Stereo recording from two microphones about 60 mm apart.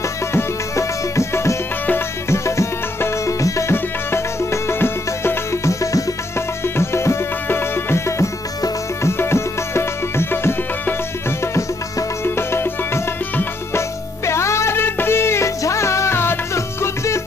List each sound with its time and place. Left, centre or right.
0.3 s music: left
3.7 s music: left
6.6 s music: left
15.6 s music: left